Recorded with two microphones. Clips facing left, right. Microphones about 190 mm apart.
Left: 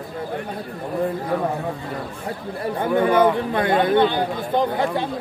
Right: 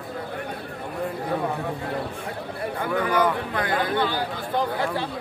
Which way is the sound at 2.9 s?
25° left (ahead or behind).